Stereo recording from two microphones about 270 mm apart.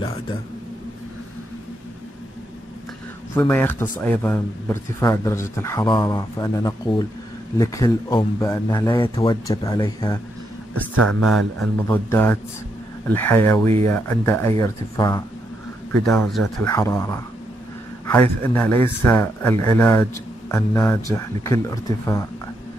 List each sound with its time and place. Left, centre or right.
3.3 s a man's voice: centre
10.7 s a man's voice: right
11.9 s a man's voice: centre
15.9 s a man's voice: centre